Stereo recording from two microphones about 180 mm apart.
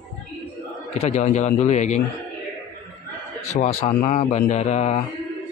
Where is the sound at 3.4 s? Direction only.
45° left (ahead or behind).